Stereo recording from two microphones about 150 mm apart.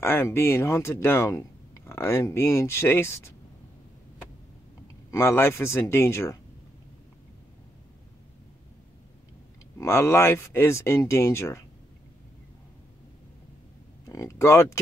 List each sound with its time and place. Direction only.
0.0 s speech: 15° left (ahead or behind)
5.1 s speech: 15° left (ahead or behind)
9.8 s speech: 20° left (ahead or behind)
14.0 s speech: 20° left (ahead or behind)